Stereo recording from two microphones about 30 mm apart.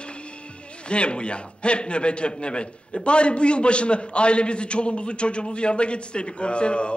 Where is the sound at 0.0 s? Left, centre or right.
Left.